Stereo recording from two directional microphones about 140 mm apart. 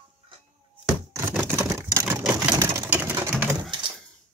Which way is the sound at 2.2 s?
5° right (ahead or behind).